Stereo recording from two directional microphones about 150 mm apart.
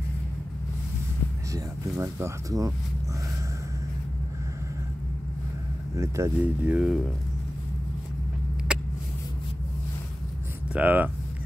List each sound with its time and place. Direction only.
1.5 s speech: 20° right (ahead or behind)
5.9 s speech: 20° right (ahead or behind)
8.7 s a sound: 5° right (ahead or behind)
10.7 s speech: 10° right (ahead or behind)